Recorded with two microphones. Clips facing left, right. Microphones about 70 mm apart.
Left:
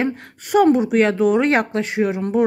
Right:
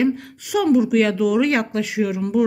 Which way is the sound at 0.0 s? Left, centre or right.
Left.